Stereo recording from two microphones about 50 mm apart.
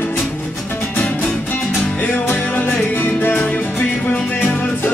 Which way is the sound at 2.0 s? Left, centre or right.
Left.